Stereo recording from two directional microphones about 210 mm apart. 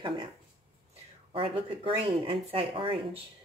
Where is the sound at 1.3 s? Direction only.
25° right (ahead or behind).